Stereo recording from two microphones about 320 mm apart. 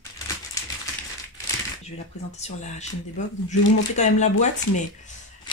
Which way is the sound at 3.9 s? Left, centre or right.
Left.